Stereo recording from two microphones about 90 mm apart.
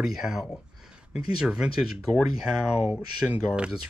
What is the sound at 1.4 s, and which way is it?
Speech, 10° right (ahead or behind).